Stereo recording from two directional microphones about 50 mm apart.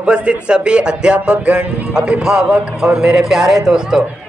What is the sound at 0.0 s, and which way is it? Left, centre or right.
A man's voice, right.